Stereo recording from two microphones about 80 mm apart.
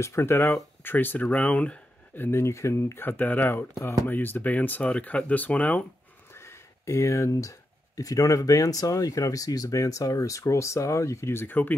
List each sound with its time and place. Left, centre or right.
0.0 s speech: left; by 5.9 s centre
6.3 s speech: left